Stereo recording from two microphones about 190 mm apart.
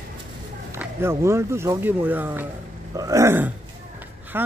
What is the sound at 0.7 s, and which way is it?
Speech, 15° right (ahead or behind).